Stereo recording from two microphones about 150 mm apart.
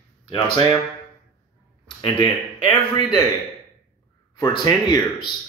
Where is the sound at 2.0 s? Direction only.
30° left (ahead or behind).